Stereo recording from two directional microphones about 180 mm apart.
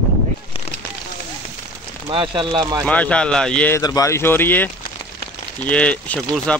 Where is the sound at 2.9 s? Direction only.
5° left (ahead or behind).